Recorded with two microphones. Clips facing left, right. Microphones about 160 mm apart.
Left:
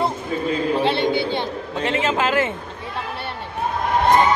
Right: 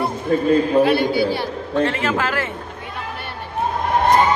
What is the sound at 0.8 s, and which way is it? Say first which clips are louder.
Speech: right 3 dB; 25° left (ahead or behind).